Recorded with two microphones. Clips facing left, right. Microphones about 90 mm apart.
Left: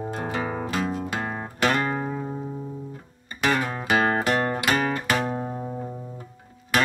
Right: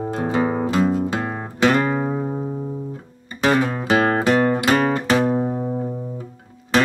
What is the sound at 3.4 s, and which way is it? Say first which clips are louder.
Music: right 6 dB; 25° right (ahead or behind).